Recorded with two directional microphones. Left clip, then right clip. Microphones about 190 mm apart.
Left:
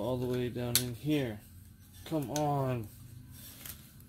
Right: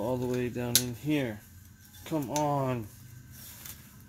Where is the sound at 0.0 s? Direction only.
10° right (ahead or behind).